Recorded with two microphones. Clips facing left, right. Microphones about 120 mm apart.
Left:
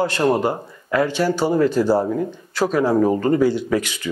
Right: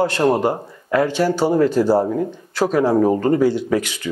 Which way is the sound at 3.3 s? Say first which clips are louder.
Right 1 dB; 40° right (ahead or behind).